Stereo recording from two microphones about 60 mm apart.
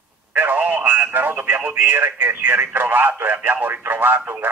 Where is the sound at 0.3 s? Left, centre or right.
Right.